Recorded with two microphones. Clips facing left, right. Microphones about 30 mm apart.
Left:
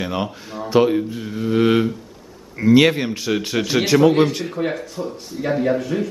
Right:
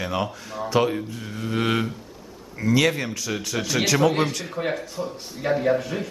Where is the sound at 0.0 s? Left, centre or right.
Centre.